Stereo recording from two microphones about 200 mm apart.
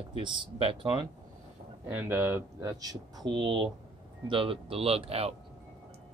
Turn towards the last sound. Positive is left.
turn(degrees=-30)  # may be behind; listen again after turning